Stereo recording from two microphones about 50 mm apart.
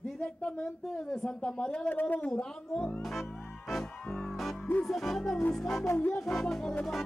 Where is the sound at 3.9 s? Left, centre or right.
Left.